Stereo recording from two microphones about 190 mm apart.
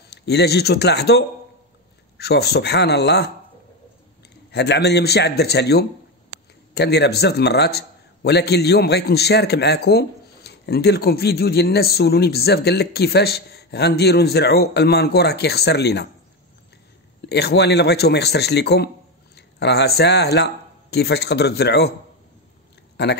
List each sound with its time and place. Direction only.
0.1 s a man's voice: 60° left (ahead or behind)
4.5 s a man's voice: 60° left (ahead or behind)
17.2 s a man's voice: 60° left (ahead or behind)